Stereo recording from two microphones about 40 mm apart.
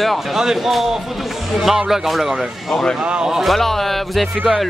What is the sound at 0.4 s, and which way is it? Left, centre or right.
Speech, centre.